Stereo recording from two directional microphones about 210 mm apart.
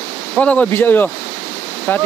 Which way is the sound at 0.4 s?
5° left (ahead or behind).